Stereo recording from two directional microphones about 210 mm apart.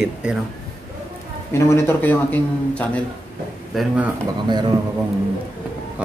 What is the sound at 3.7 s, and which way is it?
Speech, 5° right (ahead or behind).